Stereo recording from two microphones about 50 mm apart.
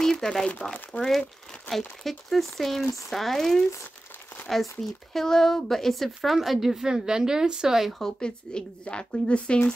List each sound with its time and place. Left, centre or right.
0.0 s crumpling: centre
1.0 s speech: centre
8.5 s a woman's voice: centre